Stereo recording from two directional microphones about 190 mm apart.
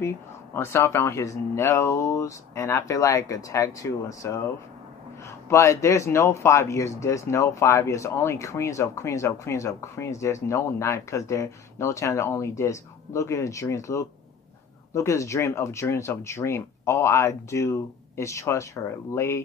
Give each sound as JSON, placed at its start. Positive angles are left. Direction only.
{"t": 0.6, "sound": "speech", "side_deg": 15}
{"t": 5.5, "sound": "speech", "side_deg": 15}